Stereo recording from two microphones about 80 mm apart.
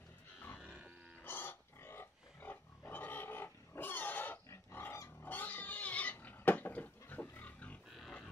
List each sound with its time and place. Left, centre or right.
0.6 s wild animals: centre
1.2 s pig: left
4.5 s pig: left
5.2 s pig: left